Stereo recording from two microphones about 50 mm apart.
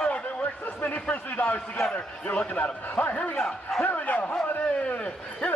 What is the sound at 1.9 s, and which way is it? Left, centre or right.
A man's voice, left.